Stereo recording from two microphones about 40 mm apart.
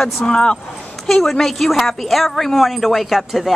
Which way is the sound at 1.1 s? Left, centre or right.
Centre.